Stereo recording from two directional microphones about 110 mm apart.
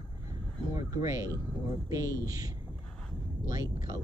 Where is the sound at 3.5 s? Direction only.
30° right (ahead or behind).